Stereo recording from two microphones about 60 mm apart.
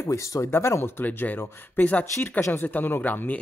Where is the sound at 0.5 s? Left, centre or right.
Left.